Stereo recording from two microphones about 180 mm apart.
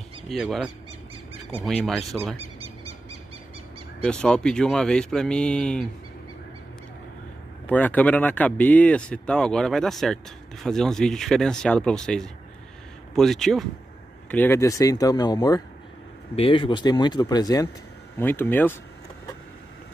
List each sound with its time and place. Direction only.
0.3 s speech: centre (ahead or behind)
1.7 s speech: 5° left (ahead or behind)
2.3 s a sound: 35° right (ahead or behind)
4.0 s speech: 5° left (ahead or behind)
7.6 s speech: 10° left (ahead or behind)
18.2 s speech: 10° left (ahead or behind)